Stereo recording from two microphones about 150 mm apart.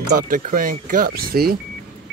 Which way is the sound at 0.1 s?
65° right (ahead or behind).